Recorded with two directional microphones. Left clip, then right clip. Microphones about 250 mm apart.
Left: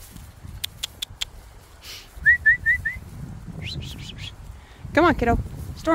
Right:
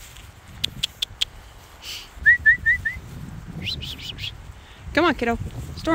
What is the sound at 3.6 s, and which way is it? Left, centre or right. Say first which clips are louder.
Bird: right 6 dB; centre.